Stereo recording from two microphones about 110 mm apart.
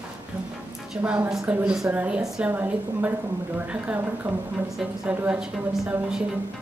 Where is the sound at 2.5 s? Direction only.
20° right (ahead or behind).